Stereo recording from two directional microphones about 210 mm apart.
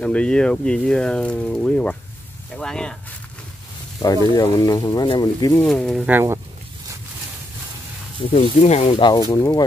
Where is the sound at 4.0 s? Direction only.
15° left (ahead or behind).